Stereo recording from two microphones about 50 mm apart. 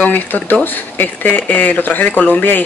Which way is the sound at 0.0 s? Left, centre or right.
Left.